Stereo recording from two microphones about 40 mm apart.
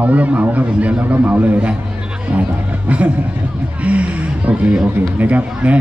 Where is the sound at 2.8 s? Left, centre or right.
Right.